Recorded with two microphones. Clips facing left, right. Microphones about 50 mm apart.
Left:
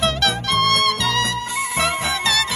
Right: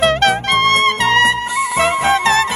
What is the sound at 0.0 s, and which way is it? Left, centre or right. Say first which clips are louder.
Music: right 7 dB; right.